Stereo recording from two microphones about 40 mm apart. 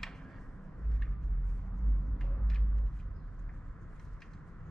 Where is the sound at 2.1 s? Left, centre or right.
Centre.